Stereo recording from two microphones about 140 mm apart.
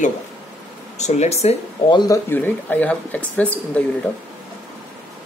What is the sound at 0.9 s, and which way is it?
Speech, 55° left (ahead or behind).